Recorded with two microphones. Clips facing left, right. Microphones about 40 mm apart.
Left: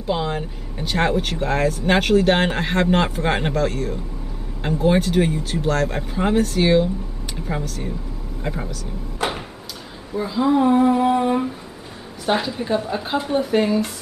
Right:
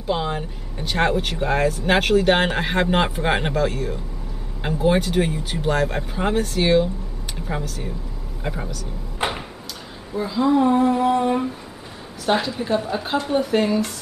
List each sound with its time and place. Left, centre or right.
0.0 s speech: centre
9.2 s a sound: right
10.1 s speech: centre